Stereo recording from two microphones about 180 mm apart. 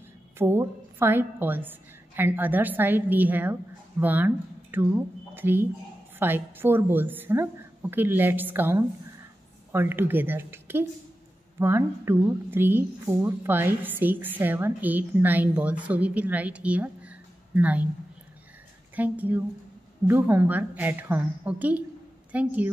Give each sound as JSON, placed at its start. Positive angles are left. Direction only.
{"t": 0.4, "sound": "a woman's voice", "side_deg": -15}
{"t": 18.9, "sound": "a woman's voice", "side_deg": -10}